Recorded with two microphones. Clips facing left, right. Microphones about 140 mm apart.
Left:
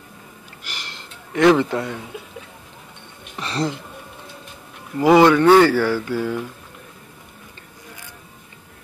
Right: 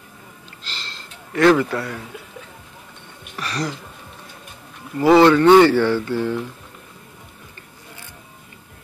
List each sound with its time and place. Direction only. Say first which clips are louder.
0.6 s a sound: even; 15° left (ahead or behind)
1.6 s speech: left 1 dB; 20° left (ahead or behind)
3.3 s speech: left 2 dB; 25° left (ahead or behind)
5.0 s speech: right 1 dB; 10° left (ahead or behind)